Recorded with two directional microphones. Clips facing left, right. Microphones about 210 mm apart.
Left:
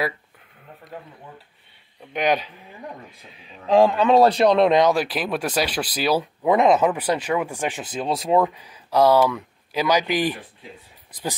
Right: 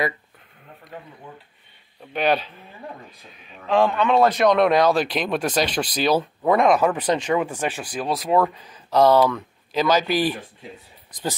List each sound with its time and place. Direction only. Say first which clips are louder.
2.1 s speech: even; 15° left (ahead or behind)
3.3 s a man's voice: left 3 dB; 35° left (ahead or behind); by 5.0 s 20° left (ahead or behind)
5.0 s speech: right 2 dB; 5° left (ahead or behind); by 7.0 s 20° left (ahead or behind)
7.0 s speech: right 2 dB; 10° left (ahead or behind); by 8.5 s 25° left (ahead or behind)
8.5 s speech: right 1 dB; 10° left (ahead or behind)